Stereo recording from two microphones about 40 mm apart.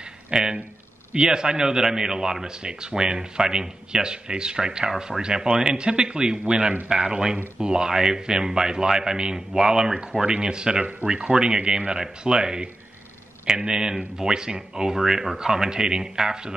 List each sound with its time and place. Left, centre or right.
0.3 s speech: centre
15.0 s speech: centre